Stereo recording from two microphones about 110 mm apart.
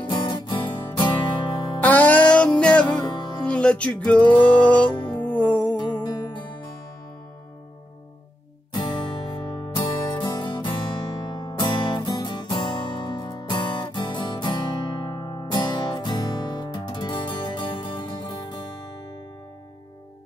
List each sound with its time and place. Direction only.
0.0 s music: 45° left (ahead or behind)
1.8 s music: 15° left (ahead or behind)
3.0 s music: 40° left (ahead or behind)
3.4 s music: 10° left (ahead or behind)
5.8 s music: 40° left (ahead or behind)
8.7 s music: 40° left (ahead or behind)